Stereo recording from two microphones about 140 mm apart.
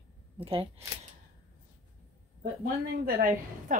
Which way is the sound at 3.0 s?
90° right.